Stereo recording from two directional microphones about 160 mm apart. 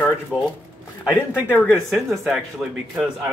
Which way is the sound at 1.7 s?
15° right (ahead or behind).